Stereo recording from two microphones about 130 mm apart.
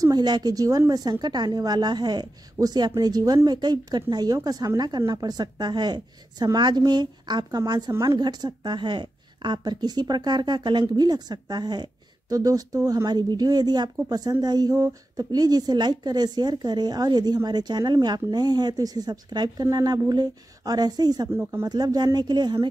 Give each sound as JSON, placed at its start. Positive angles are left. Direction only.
{"t": 0.0, "sound": "a woman's voice", "side_deg": -30}
{"t": 21.3, "sound": "speech", "side_deg": -15}
{"t": 21.6, "sound": "speech", "side_deg": -30}